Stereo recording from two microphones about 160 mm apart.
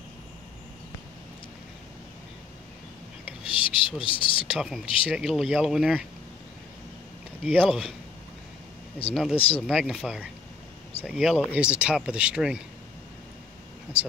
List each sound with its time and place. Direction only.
3.4 s a sound: 35° left (ahead or behind)
4.0 s speech: 35° left (ahead or behind)
4.5 s speech: 5° right (ahead or behind)
7.4 s speech: 5° right (ahead or behind)
9.3 s speech: 35° left (ahead or behind)
9.6 s speech: centre (ahead or behind)
13.9 s speech: 5° right (ahead or behind)